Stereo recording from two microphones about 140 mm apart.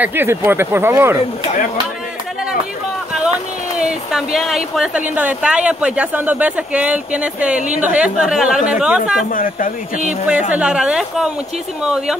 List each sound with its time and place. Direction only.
0.0 s a woman's voice: 15° right (ahead or behind)
3.7 s a woman's voice: 5° right (ahead or behind)
9.3 s speech: 80° left
10.5 s a woman's voice: 5° right (ahead or behind)